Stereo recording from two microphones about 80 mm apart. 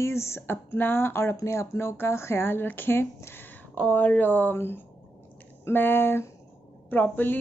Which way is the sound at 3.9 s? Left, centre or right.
Left.